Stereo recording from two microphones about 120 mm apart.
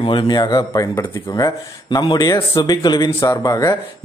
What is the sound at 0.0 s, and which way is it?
Speech, 40° left (ahead or behind).